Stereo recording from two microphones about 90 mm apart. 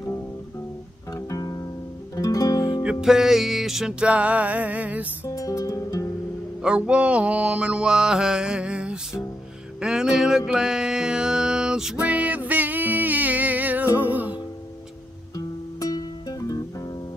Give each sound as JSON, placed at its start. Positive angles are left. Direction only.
{"t": 1.1, "sound": "music", "side_deg": 40}
{"t": 2.8, "sound": "mantra", "side_deg": -10}
{"t": 5.2, "sound": "music", "side_deg": 40}
{"t": 6.6, "sound": "mantra", "side_deg": -10}
{"t": 9.8, "sound": "music", "side_deg": -10}
{"t": 15.3, "sound": "music", "side_deg": 40}